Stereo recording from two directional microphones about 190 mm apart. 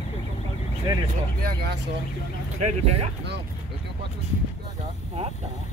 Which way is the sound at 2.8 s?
35° right (ahead or behind).